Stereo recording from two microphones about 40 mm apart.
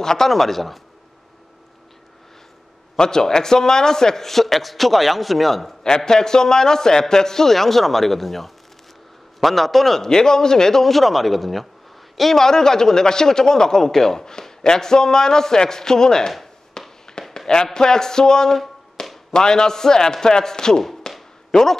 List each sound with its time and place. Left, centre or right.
0.0 s a man's voice: centre
3.0 s a man's voice: centre
5.9 s a man's voice: centre
16.8 s fireworks: centre
17.2 s a sound: left
17.7 s a man's voice: centre
19.0 s a sound: left
19.3 s a man's voice: centre
21.0 s a sound: centre